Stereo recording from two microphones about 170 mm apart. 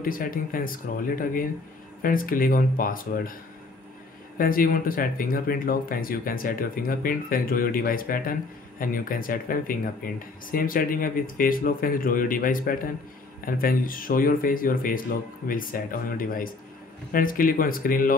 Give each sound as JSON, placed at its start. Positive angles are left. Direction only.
{"t": 0.0, "sound": "speech", "side_deg": 55}
{"t": 4.4, "sound": "speech", "side_deg": 60}